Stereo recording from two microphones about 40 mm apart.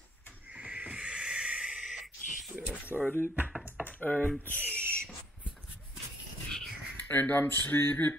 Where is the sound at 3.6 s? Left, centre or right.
Right.